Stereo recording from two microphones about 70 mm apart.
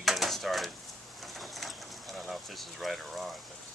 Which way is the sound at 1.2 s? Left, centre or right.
Centre.